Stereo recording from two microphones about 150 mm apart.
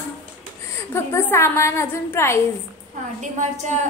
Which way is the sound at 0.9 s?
15° left (ahead or behind).